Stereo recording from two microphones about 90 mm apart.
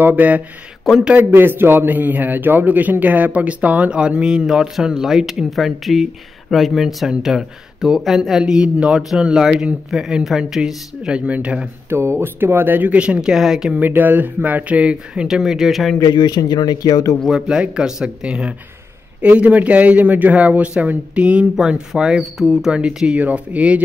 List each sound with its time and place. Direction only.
0.0 s a man's voice: 15° right (ahead or behind)
11.9 s a man's voice: 30° right (ahead or behind); by 13.7 s 5° right (ahead or behind)
13.7 s a man's voice: 20° right (ahead or behind); by 16.0 s centre (ahead or behind)
16.0 s speech: 50° left (ahead or behind)
17.2 s a man's voice: 5° right (ahead or behind)